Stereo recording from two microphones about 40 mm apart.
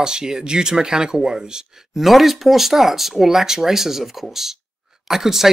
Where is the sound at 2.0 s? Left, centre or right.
Centre.